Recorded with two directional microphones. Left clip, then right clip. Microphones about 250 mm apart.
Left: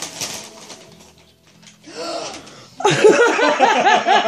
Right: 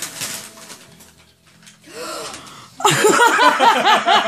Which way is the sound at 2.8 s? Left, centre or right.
Centre.